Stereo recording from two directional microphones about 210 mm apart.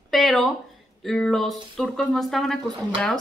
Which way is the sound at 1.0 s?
Centre (ahead or behind).